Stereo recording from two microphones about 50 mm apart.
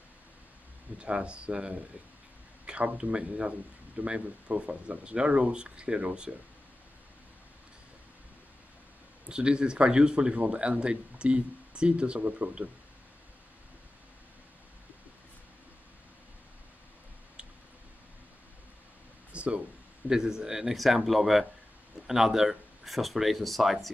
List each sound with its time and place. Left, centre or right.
0.9 s speech: right
9.3 s speech: centre
19.3 s a sound: right
20.1 s speech: centre